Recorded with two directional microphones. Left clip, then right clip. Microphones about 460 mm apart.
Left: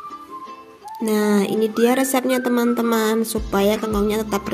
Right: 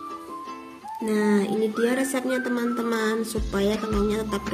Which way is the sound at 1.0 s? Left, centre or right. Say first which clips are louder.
Left 4 dB; centre.